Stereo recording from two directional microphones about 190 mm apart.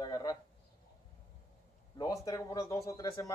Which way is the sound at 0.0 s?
20° left (ahead or behind).